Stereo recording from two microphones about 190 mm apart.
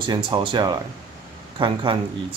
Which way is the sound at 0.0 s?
25° right (ahead or behind).